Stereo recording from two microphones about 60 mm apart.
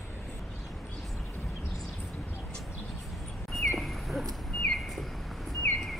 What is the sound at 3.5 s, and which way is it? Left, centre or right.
Bird, centre.